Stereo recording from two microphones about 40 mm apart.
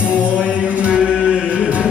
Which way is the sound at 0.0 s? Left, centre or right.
Right.